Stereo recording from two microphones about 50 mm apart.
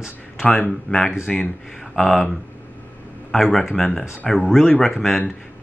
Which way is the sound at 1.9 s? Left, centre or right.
Centre.